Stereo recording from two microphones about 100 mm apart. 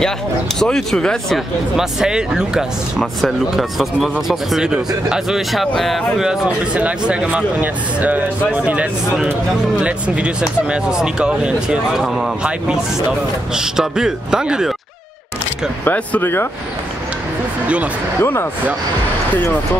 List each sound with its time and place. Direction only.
0.6 s speech: 5° left (ahead or behind)
1.8 s speech: 5° right (ahead or behind)
15.8 s speech: 20° left (ahead or behind)
18.2 s speech: 20° left (ahead or behind)